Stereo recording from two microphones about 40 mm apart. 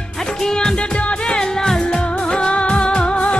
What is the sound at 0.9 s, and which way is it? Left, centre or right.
Music, left.